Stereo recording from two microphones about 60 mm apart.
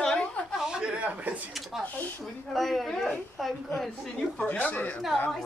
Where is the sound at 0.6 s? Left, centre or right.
Centre.